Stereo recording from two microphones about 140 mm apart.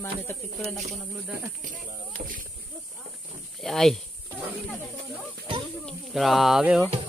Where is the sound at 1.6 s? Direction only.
75° right (ahead or behind).